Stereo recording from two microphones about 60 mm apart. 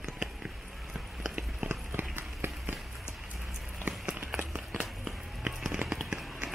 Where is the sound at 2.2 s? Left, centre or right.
Right.